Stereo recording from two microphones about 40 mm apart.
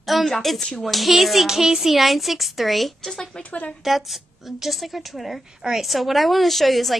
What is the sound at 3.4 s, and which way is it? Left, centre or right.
Speech, left.